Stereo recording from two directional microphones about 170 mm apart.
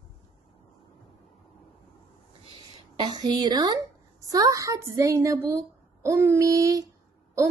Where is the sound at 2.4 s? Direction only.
30° right (ahead or behind).